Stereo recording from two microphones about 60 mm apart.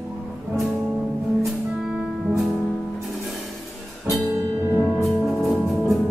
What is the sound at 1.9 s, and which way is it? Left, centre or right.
Music, centre.